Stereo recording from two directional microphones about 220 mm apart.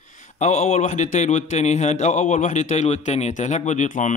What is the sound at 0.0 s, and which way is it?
A man's voice, 35° left (ahead or behind).